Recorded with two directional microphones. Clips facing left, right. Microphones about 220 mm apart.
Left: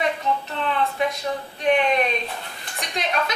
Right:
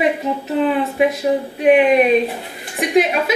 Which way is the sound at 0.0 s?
10° right (ahead or behind).